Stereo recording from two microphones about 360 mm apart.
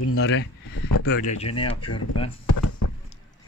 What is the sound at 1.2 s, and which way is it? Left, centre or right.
Speech, centre.